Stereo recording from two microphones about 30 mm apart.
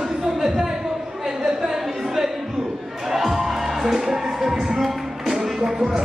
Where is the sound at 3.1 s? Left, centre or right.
Centre.